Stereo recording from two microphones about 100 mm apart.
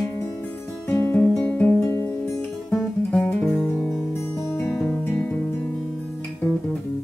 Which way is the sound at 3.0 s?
15° left (ahead or behind).